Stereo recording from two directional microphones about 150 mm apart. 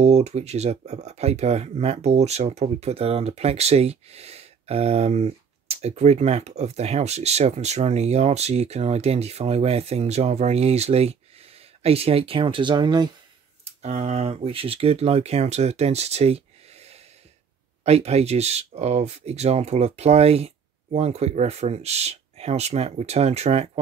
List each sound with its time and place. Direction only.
0.0 s speech: 45° right (ahead or behind); by 13.1 s 30° right (ahead or behind)
13.7 s speech: 50° right (ahead or behind)